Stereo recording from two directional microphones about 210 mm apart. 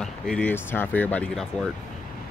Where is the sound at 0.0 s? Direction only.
5° left (ahead or behind).